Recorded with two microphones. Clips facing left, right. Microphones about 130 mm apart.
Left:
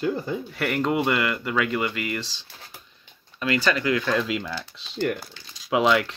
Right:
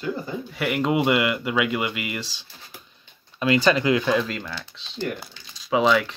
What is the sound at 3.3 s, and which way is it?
Speech, 20° right (ahead or behind).